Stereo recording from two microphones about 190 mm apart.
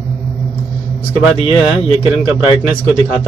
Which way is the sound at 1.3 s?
30° left (ahead or behind).